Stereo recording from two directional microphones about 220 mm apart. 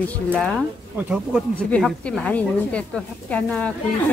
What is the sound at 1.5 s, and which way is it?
A woman's voice, 5° left (ahead or behind).